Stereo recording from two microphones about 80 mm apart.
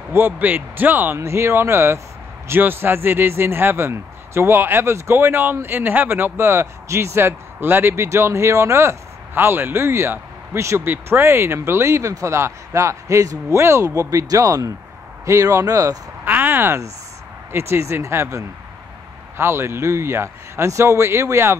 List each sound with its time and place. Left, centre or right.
0.1 s speech: right
1.1 s a man's voice: right
16.3 s speech: right